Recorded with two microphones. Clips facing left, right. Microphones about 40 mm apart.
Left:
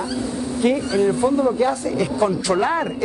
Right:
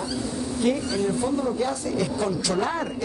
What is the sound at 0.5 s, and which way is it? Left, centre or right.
Speech, left.